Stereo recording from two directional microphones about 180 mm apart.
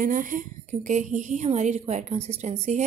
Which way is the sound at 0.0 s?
50° right (ahead or behind).